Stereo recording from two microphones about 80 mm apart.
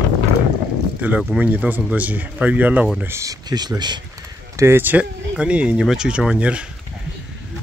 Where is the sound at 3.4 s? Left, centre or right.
Right.